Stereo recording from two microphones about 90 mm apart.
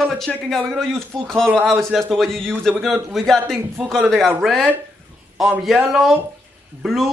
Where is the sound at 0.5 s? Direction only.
5° left (ahead or behind).